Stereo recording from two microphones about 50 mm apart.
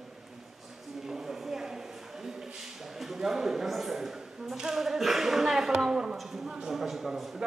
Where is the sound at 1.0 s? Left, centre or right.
Centre.